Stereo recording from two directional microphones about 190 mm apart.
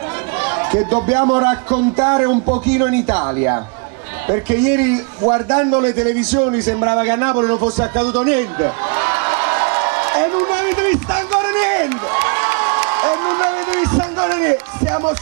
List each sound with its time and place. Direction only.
0.6 s a sound: 15° right (ahead or behind)
1.2 s a man's voice: 25° right (ahead or behind)
4.3 s a man's voice: 15° right (ahead or behind)
5.2 s a man's voice: 30° right (ahead or behind)
6.6 s a man's voice: 15° right (ahead or behind)
7.8 s a man's voice: 10° right (ahead or behind)
8.3 s crowd: 20° right (ahead or behind)
10.3 s run: 15° right (ahead or behind)
10.8 s a sound: 10° right (ahead or behind)
11.5 s crowd: 15° right (ahead or behind)
14.2 s a sound: 10° right (ahead or behind)
14.5 s a sound: 25° right (ahead or behind)